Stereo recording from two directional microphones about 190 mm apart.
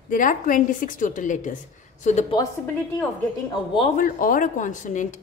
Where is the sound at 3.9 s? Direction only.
45° left (ahead or behind).